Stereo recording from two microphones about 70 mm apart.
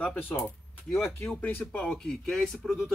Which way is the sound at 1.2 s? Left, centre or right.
Left.